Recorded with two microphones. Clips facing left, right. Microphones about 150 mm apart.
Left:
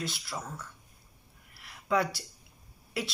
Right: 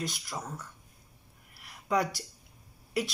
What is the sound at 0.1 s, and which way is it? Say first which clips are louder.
Speech: even; 15° right (ahead or behind).